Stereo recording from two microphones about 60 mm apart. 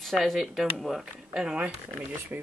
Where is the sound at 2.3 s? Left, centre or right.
Right.